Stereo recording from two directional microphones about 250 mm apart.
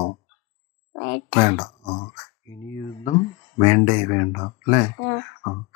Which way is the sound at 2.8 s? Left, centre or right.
Left.